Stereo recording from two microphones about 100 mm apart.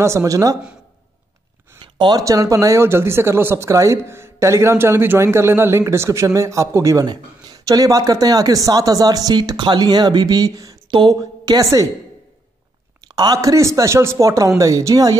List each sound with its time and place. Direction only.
0.0 s speech: 30° right (ahead or behind)
2.0 s speech: 50° right (ahead or behind)
2.2 s speech: 35° right (ahead or behind)
10.9 s a sound: 50° right (ahead or behind)
11.1 s speech: 35° right (ahead or behind)
13.1 s speech: 40° right (ahead or behind)